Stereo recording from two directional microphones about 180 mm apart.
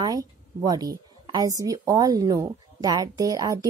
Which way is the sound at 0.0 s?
20° right (ahead or behind).